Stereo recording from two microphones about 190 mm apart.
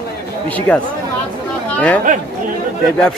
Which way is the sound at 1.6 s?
10° left (ahead or behind).